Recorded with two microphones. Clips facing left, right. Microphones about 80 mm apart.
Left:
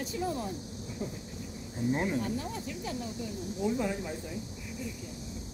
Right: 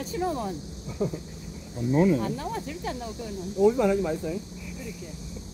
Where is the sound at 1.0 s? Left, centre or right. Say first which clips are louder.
Right 10 dB; right.